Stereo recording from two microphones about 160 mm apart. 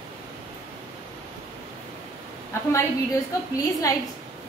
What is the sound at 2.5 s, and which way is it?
Speech, 15° left (ahead or behind).